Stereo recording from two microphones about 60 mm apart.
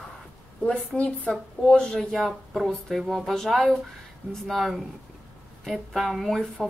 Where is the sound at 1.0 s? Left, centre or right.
Centre.